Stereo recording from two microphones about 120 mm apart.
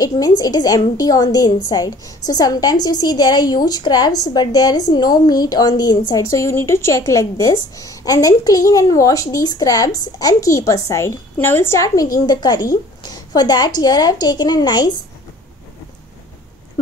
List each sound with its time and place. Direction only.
0.0 s a woman's voice: 30° left (ahead or behind)